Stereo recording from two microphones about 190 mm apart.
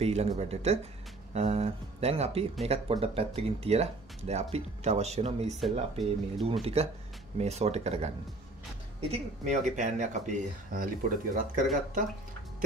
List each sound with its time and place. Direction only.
0.0 s speech: 35° right (ahead or behind)
5.6 s speech: centre (ahead or behind)
6.6 s speech: 35° right (ahead or behind)
9.1 s speech: 40° right (ahead or behind)